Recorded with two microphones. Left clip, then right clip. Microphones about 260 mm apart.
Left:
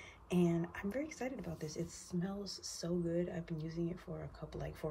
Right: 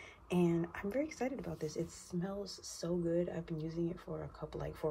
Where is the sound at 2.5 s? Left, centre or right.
Centre.